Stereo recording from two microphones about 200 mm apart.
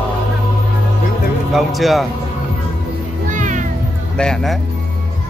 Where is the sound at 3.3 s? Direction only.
40° right (ahead or behind).